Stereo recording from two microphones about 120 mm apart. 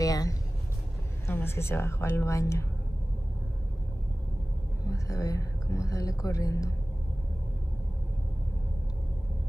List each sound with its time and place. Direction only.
0.0 s vehicle: 30° left (ahead or behind)
1.2 s speech: 20° left (ahead or behind)
4.8 s speech: 30° left (ahead or behind)